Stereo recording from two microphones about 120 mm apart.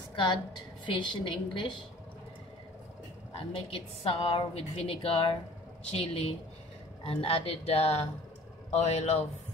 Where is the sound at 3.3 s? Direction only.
55° left (ahead or behind).